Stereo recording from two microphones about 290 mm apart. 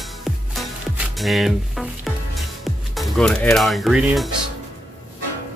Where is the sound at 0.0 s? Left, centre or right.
Centre.